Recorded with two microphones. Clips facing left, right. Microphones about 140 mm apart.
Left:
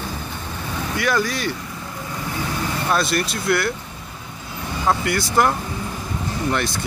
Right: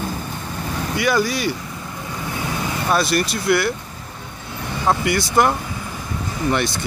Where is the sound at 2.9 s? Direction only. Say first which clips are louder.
Right 3 dB; 5° right (ahead or behind).